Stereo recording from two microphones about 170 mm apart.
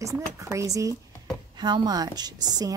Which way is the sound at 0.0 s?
20° right (ahead or behind).